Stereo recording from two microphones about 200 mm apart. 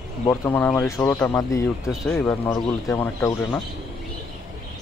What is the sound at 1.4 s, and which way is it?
Speech, 15° left (ahead or behind).